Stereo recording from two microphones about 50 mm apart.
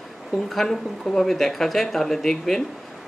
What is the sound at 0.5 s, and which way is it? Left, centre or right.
Speech, centre.